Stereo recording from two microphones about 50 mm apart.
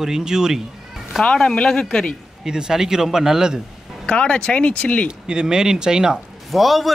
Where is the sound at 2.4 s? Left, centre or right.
Centre.